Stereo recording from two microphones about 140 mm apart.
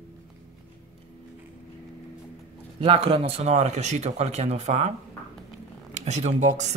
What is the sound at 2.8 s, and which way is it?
Speech, 45° right (ahead or behind).